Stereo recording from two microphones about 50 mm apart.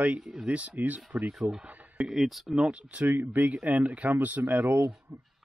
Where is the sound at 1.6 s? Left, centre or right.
Right.